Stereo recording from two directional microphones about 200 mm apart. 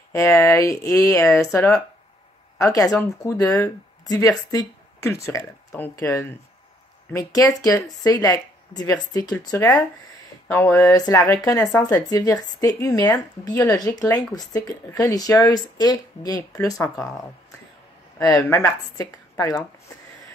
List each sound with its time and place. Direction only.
0.1 s speech: 15° left (ahead or behind)